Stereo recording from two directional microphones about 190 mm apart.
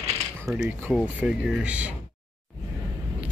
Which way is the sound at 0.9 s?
5° right (ahead or behind).